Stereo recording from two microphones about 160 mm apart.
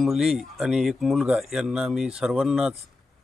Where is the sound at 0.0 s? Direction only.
Centre (ahead or behind).